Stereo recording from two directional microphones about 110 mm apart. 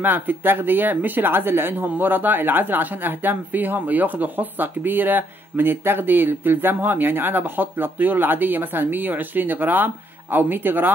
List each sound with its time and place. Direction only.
0.0 s speech: 20° right (ahead or behind)